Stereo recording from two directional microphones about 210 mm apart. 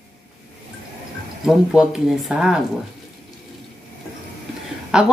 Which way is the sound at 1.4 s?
Centre (ahead or behind).